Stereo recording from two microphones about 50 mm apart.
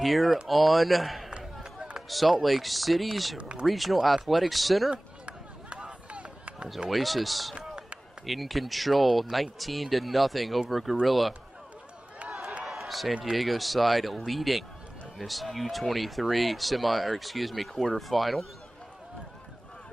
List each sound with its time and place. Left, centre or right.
0.0 s speech: centre
3.3 s speech: right
3.6 s speech: centre
4.9 s run: right
6.9 s speech: centre
7.5 s a sound: right
8.3 s speech: centre
12.3 s a sound: centre
13.2 s speech: centre